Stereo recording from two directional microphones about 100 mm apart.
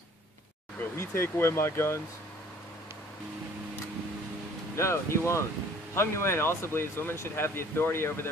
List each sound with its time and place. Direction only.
0.9 s speech: 25° left (ahead or behind)
4.7 s speech: 30° left (ahead or behind)